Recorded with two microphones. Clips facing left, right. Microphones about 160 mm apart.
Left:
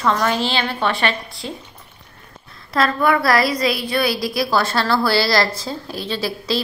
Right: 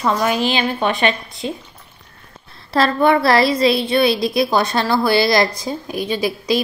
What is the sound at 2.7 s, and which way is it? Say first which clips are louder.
A woman's voice: right 3 dB; 30° right (ahead or behind).